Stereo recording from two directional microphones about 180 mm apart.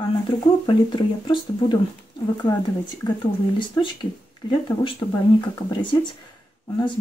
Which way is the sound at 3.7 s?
25° left (ahead or behind).